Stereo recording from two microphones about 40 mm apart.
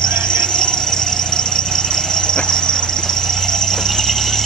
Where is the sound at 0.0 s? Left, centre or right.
Left.